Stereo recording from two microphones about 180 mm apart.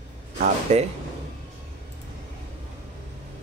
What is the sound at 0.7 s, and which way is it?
Speech, 40° right (ahead or behind).